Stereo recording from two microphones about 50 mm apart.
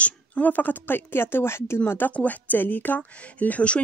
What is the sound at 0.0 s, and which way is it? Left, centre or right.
Speech, left.